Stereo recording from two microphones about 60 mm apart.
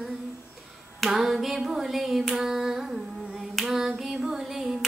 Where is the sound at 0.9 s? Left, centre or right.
Centre.